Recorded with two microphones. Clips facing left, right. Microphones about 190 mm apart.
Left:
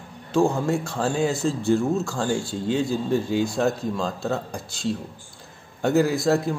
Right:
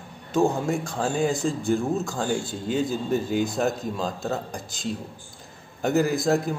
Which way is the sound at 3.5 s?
Centre (ahead or behind).